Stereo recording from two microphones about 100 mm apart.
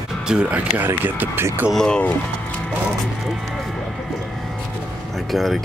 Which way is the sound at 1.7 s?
5° left (ahead or behind).